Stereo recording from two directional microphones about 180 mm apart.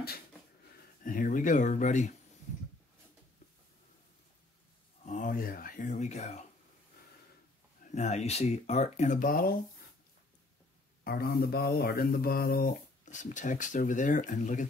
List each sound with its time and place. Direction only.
1.0 s speech: 50° left (ahead or behind)
5.0 s a sound: 45° left (ahead or behind)
7.9 s speech: 40° left (ahead or behind); by 9.6 s 55° left (ahead or behind)
11.1 s speech: 55° left (ahead or behind)